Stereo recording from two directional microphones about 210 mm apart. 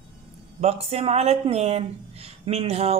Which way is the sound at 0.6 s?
30° right (ahead or behind).